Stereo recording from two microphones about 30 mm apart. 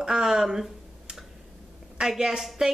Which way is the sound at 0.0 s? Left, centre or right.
Right.